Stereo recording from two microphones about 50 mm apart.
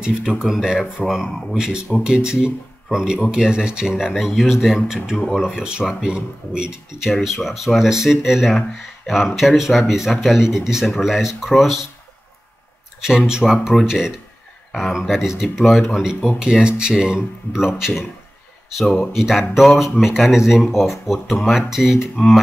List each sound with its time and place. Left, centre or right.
0.0 s speech: centre
1.2 s speech: centre
2.0 s speech: centre
3.9 s speech: centre
13.3 s speech: centre
22.2 s speech: centre